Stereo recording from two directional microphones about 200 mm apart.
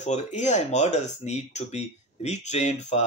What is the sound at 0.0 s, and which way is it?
Speech, 35° left (ahead or behind).